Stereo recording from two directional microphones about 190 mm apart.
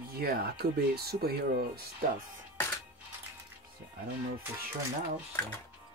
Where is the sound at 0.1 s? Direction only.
55° right (ahead or behind).